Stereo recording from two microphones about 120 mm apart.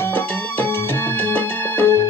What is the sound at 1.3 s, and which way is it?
Music, 15° left (ahead or behind).